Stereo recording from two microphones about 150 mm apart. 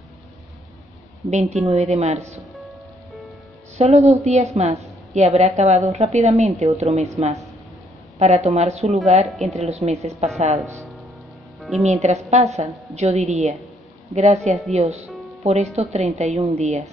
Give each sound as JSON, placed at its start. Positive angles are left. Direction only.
{"t": 1.3, "sound": "a woman's voice", "side_deg": -50}
{"t": 3.7, "sound": "a woman's voice", "side_deg": -45}
{"t": 11.8, "sound": "a woman's voice", "side_deg": -50}